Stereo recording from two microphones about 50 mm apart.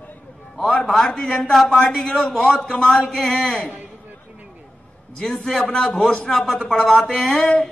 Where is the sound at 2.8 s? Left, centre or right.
Centre.